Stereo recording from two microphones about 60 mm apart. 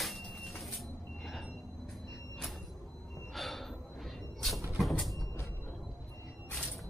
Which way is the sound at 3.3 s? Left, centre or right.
Centre.